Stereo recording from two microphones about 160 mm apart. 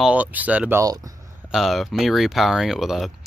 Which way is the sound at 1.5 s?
Centre (ahead or behind).